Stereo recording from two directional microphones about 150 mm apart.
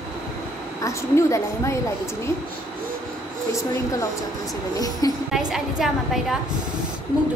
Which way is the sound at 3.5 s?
20° left (ahead or behind).